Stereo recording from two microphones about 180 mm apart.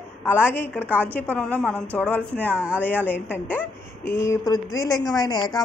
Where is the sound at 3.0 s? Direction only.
10° left (ahead or behind).